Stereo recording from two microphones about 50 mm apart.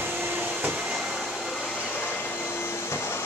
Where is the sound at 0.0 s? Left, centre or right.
Right.